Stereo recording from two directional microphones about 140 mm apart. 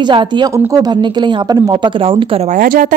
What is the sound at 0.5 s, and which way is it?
Speech, 20° right (ahead or behind).